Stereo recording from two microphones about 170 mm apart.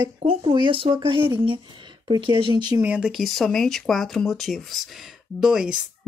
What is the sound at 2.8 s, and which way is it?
Speech, 5° right (ahead or behind).